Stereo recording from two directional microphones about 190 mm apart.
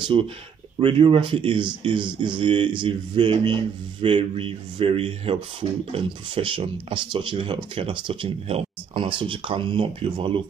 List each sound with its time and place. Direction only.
0.0 s speech: 25° right (ahead or behind)